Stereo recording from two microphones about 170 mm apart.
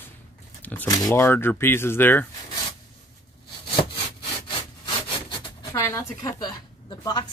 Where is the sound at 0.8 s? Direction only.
20° left (ahead or behind).